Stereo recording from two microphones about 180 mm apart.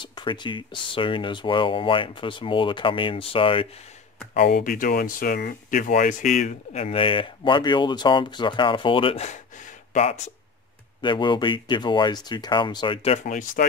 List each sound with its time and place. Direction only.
0.0 s speech: 25° left (ahead or behind)
4.3 s speech: 55° left (ahead or behind); by 10.3 s 40° left (ahead or behind)
11.0 s speech: 25° left (ahead or behind); by 13.7 s 45° left (ahead or behind)